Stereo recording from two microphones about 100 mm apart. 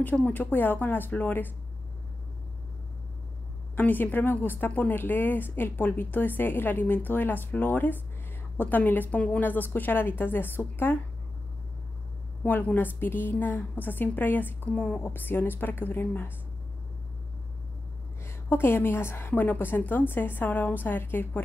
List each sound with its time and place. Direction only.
0.0 s speech: 15° left (ahead or behind)
3.7 s speech: 20° left (ahead or behind)
12.4 s speech: 20° left (ahead or behind)
18.2 s speech: 25° left (ahead or behind)